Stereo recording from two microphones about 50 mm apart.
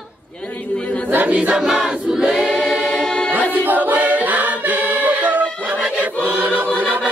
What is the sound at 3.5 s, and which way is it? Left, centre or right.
Choir, right.